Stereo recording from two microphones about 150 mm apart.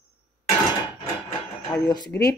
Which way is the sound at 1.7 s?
30° left (ahead or behind).